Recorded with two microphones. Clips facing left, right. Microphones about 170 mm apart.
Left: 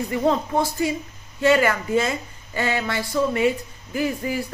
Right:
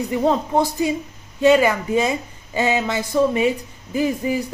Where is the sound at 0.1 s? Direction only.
15° right (ahead or behind).